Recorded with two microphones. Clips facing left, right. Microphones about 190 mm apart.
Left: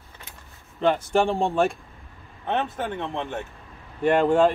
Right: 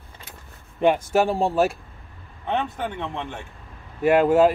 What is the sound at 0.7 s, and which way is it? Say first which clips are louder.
Speech: right 2 dB; 10° right (ahead or behind).